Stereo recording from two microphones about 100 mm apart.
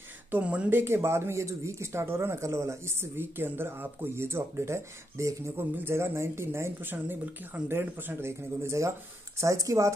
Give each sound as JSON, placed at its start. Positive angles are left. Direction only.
{"t": 0.3, "sound": "speech", "side_deg": -15}